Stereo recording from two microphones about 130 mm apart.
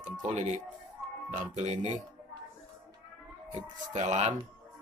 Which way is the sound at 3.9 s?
60° right (ahead or behind).